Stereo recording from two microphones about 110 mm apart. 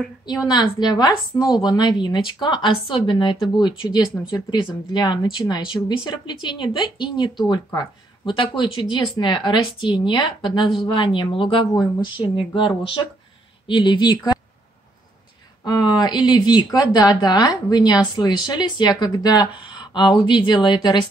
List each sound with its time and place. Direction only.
0.5 s speech: 40° left (ahead or behind)
15.6 s speech: 40° left (ahead or behind)